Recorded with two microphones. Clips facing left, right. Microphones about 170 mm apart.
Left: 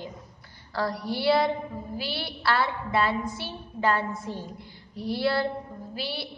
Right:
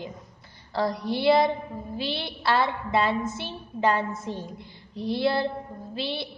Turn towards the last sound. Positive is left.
turn(degrees=-20)  # may be behind; listen again after turning